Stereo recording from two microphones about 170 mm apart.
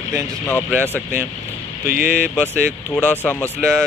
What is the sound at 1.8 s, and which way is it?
Speech, 50° left (ahead or behind).